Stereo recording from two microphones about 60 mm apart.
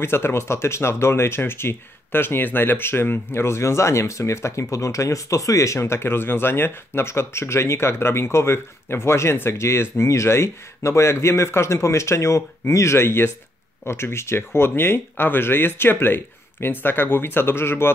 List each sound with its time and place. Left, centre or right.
0.0 s speech: left
5.8 s speech: left